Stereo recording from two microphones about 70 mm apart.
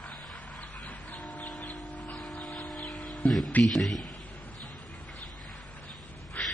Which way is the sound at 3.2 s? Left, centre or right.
Left.